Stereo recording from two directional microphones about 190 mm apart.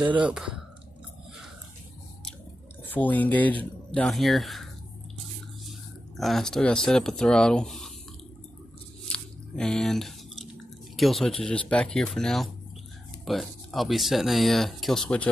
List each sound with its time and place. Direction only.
0.0 s speech: 25° right (ahead or behind)
0.3 s speech: 5° right (ahead or behind)
2.8 s speech: 10° left (ahead or behind)
5.7 s speech: centre (ahead or behind)
9.1 s chewing: 5° left (ahead or behind)
11.0 s speech: centre (ahead or behind)